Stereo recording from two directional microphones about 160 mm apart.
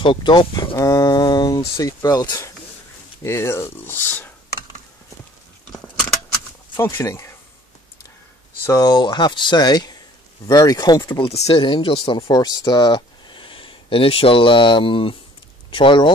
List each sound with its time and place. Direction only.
0.0 s speech: 30° left (ahead or behind); by 4.3 s 10° left (ahead or behind)
5.7 s a sound: 5° left (ahead or behind)
6.8 s speech: 15° left (ahead or behind)
8.6 s speech: 25° left (ahead or behind)
11.2 s speech: 40° left (ahead or behind)